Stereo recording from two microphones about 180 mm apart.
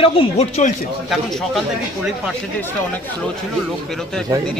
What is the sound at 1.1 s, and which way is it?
Speech, centre (ahead or behind).